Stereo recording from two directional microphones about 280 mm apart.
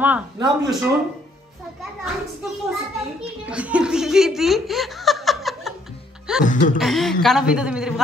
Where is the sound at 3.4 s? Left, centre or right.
Centre.